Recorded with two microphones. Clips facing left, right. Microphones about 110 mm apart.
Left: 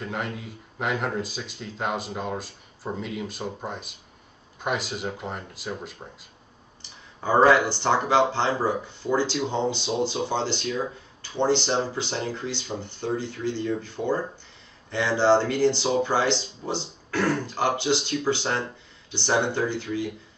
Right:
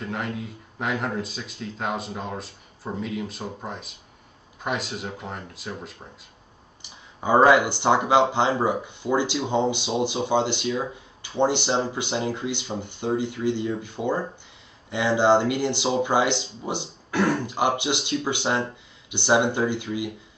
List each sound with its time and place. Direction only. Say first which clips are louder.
0.0 s speech: right 1 dB; centre (ahead or behind)
7.2 s speech: right 1 dB; 15° right (ahead or behind)